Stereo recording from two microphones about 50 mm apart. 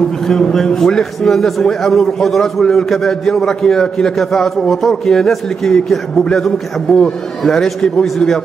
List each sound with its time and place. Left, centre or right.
0.3 s a man's voice: centre